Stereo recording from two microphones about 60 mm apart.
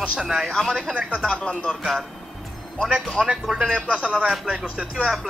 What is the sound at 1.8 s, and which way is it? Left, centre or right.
Speech, centre.